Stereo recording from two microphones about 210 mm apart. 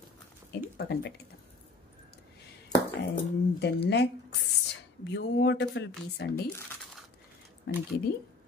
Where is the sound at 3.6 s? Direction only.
50° left (ahead or behind).